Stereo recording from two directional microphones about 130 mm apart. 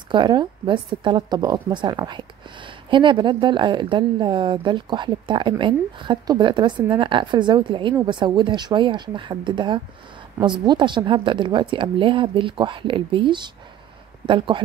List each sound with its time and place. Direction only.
0.1 s a woman's voice: 35° right (ahead or behind)